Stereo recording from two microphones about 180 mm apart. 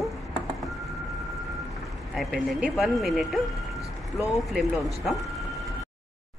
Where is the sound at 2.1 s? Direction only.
Centre (ahead or behind).